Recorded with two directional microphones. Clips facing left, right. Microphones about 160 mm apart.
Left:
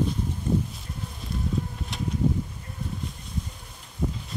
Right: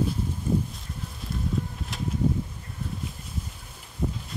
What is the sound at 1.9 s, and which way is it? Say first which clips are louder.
Bee: left 1 dB; centre (ahead or behind).